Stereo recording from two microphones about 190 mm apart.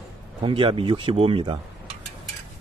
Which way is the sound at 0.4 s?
30° right (ahead or behind).